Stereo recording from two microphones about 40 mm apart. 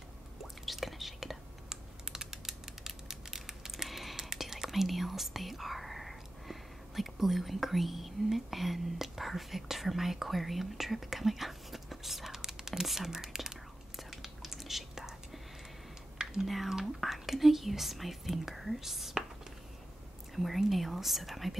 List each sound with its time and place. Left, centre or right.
0.7 s whispering: centre
1.7 s a sound: centre
4.3 s speech: centre
12.4 s whispering: centre
16.2 s typing: right
17.0 s speech: centre
20.3 s speech: centre